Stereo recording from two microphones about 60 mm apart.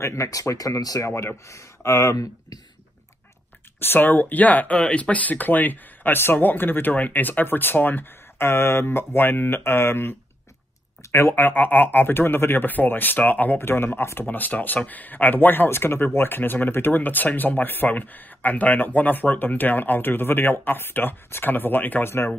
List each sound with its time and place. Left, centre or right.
0.0 s speech: left
0.3 s speech: left
1.0 s speech: left
3.8 s speech: left
11.1 s speech: left
11.3 s speech: left